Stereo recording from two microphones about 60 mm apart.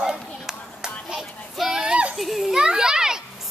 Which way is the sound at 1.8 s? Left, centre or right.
Centre.